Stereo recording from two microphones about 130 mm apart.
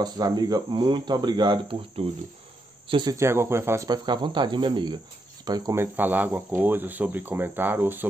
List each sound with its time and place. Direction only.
0.0 s speech: 30° right (ahead or behind)
3.1 s speech: 20° right (ahead or behind)
3.9 s speech: 35° right (ahead or behind)
5.8 s speech: 15° right (ahead or behind)